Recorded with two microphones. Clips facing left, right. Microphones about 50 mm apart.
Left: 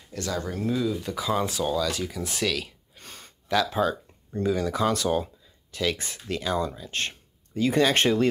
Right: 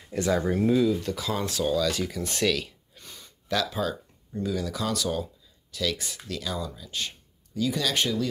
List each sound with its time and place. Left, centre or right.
0.1 s speech: centre
1.0 s speech: centre
3.0 s gasp: left
3.8 s speech: left